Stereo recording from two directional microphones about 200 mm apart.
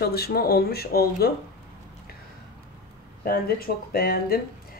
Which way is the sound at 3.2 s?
50° left (ahead or behind).